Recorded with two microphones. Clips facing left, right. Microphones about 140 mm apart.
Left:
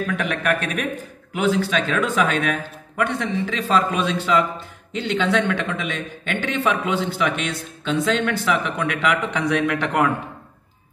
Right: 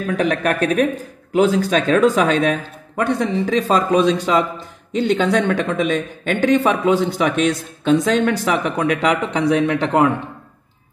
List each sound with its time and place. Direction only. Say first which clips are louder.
0.0 s a man's voice: right 5 dB; 35° right (ahead or behind)